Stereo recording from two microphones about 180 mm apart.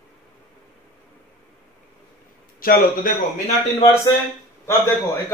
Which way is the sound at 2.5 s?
55° left (ahead or behind).